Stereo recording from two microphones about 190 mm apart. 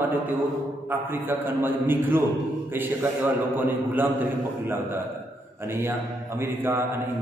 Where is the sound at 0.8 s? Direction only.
10° right (ahead or behind).